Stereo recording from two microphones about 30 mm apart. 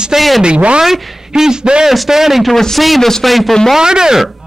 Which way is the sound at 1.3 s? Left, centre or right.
Right.